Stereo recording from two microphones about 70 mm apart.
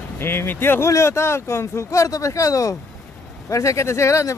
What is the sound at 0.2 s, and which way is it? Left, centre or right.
Speech, left.